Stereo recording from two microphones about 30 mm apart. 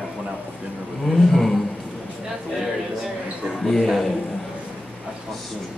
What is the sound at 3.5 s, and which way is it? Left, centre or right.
Speech, centre.